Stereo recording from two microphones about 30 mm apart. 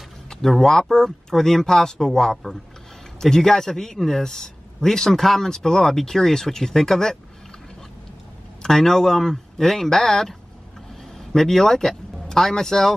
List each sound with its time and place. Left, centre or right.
0.3 s a man's voice: centre
8.6 s a man's voice: centre